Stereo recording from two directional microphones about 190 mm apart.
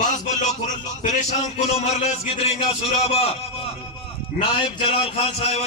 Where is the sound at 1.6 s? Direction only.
30° left (ahead or behind).